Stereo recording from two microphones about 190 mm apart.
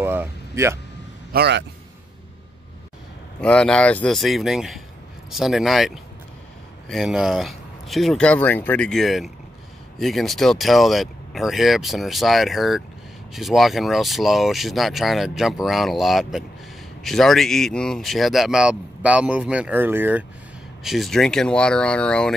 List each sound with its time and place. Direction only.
0.0 s a sound: 10° right (ahead or behind)
1.3 s a man's voice: 60° right (ahead or behind)
3.3 s speech: 5° left (ahead or behind)